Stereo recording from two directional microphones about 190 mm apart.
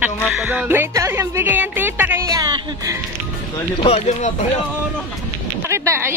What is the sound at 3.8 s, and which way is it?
Speech, 35° left (ahead or behind).